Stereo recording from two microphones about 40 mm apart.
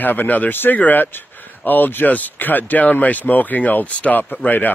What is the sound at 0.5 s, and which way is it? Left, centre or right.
Speech, left.